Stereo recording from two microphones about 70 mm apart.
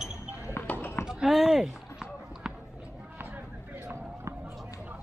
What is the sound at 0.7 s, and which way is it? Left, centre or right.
Clip-clop, left.